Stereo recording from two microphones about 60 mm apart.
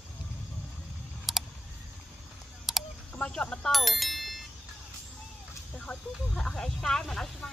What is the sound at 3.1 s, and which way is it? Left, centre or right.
Speech, centre.